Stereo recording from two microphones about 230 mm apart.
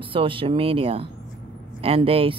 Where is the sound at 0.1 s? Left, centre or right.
Right.